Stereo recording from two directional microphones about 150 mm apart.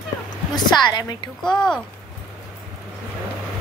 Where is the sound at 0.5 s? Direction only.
25° left (ahead or behind).